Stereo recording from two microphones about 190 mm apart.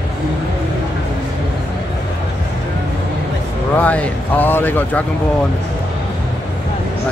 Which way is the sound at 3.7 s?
5° left (ahead or behind).